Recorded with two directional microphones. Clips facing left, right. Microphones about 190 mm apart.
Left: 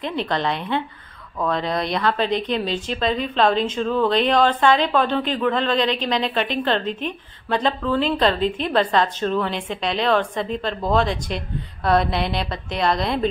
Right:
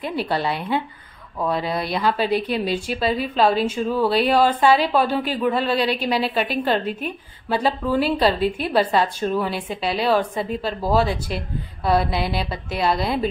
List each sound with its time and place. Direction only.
0.0 s a woman's voice: 5° right (ahead or behind)